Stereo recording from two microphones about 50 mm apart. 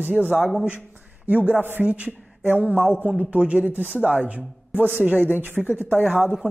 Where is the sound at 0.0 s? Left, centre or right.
Right.